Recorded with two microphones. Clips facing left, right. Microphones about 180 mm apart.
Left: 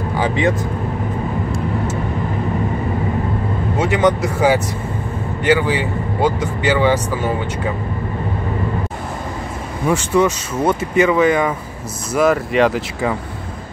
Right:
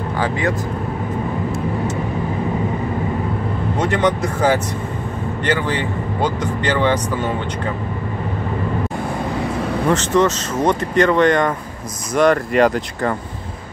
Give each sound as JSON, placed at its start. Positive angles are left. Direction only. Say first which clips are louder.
{"t": 0.2, "sound": "speech", "louder": "left 3 dB", "side_deg": 20}
{"t": 3.7, "sound": "speech", "louder": "left 2 dB", "side_deg": 5}
{"t": 9.8, "sound": "speech", "louder": "left 1 dB", "side_deg": 10}